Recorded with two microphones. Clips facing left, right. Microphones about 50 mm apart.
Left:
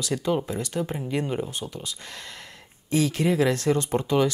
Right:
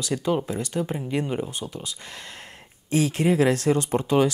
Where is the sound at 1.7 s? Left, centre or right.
Right.